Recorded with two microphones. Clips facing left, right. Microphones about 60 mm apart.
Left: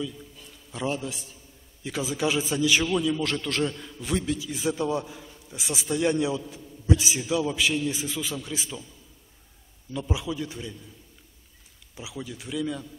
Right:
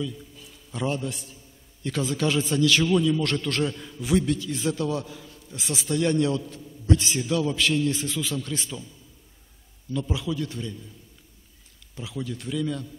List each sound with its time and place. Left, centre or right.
0.0 s a man's voice: centre
9.9 s a man's voice: centre
11.9 s a man's voice: centre